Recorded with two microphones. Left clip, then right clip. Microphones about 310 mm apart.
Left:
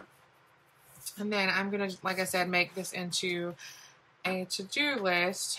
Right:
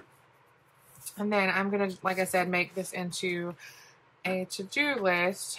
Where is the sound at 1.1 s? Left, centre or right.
Centre.